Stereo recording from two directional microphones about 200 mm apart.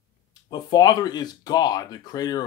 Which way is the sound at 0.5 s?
20° left (ahead or behind).